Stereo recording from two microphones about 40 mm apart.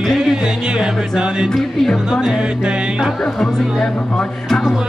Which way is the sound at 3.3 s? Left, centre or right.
Centre.